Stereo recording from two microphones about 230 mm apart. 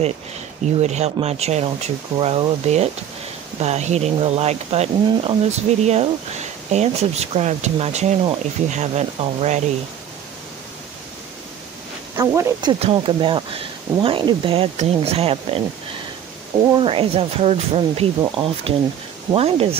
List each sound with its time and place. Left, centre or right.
0.7 s speech: right
12.2 s speech: centre
16.8 s speech: right
19.3 s speech: right